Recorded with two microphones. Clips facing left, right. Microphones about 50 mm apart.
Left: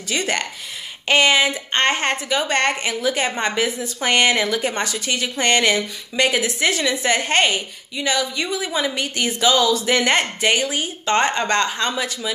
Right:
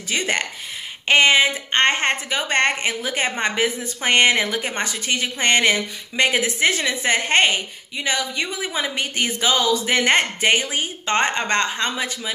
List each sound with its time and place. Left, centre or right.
0.1 s a woman's voice: right